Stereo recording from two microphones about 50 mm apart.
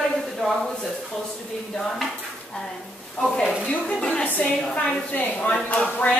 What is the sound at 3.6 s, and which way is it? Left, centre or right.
A woman's voice, left.